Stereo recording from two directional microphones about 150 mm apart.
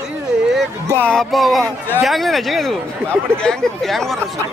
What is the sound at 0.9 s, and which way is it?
Speech, 5° left (ahead or behind).